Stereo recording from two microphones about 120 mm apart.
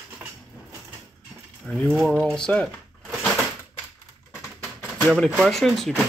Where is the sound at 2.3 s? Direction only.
5° left (ahead or behind).